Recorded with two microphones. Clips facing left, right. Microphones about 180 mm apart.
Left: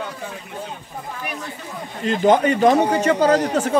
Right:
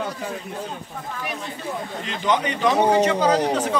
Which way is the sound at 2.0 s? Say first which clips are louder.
Left 8 dB; 45° left (ahead or behind).